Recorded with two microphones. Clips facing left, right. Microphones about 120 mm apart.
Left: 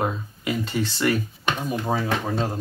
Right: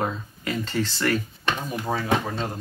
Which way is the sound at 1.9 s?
25° left (ahead or behind).